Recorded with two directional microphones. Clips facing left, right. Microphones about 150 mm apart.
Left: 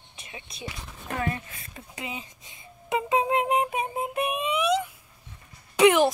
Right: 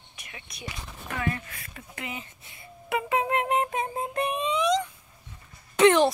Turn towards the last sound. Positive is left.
turn(degrees=10)  # may be behind; listen again after turning